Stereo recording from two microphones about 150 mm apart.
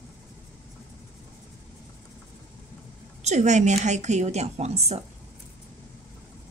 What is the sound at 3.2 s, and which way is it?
Speech, 50° right (ahead or behind).